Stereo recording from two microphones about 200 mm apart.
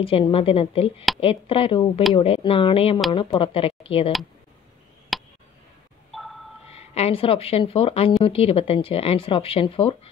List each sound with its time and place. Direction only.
0.0 s speech: 25° left (ahead or behind)
5.1 s a sound: centre (ahead or behind)
6.7 s speech: 30° left (ahead or behind)